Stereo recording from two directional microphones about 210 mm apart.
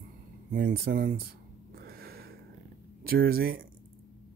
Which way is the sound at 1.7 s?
45° right (ahead or behind).